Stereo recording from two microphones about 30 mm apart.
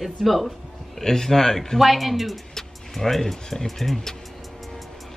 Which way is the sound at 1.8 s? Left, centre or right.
Centre.